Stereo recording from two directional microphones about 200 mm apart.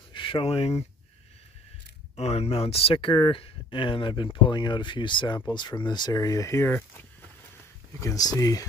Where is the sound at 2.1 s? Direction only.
30° left (ahead or behind).